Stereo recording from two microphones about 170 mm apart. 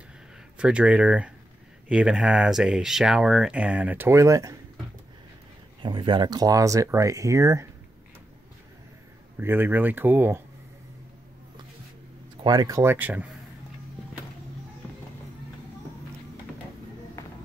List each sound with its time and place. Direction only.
0.6 s speech: 5° right (ahead or behind)
5.8 s speech: 30° right (ahead or behind)
9.4 s speech: 10° right (ahead or behind)
12.4 s speech: 20° right (ahead or behind)